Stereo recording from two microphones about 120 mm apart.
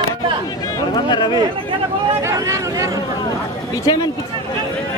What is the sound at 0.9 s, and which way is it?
Speech, 35° left (ahead or behind).